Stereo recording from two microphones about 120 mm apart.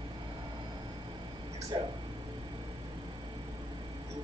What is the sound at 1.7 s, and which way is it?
Speech, 40° right (ahead or behind).